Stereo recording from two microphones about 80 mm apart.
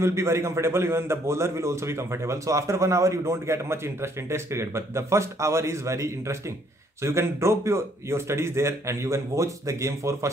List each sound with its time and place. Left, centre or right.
0.0 s a man's voice: right